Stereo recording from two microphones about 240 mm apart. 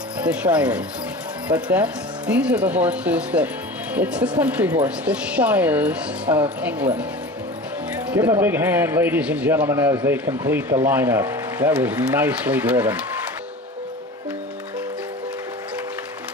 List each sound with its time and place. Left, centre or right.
0.2 s speech: centre
7.9 s speech: centre